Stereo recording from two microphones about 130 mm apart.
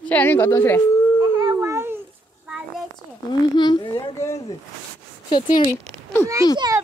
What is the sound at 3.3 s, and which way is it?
Speech, 35° left (ahead or behind).